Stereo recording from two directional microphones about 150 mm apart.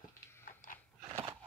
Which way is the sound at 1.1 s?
20° right (ahead or behind).